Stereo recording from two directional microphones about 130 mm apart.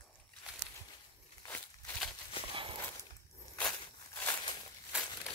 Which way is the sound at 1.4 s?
20° left (ahead or behind).